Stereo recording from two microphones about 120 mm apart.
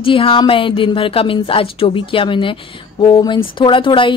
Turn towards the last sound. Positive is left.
turn(degrees=45)  # may be behind; listen again after turning